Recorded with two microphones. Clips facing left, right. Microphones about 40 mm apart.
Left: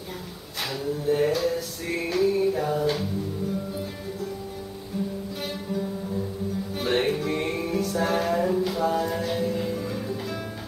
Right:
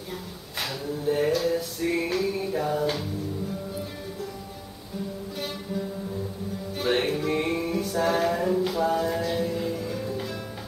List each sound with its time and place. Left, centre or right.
1.1 s music: centre
5.4 s music: centre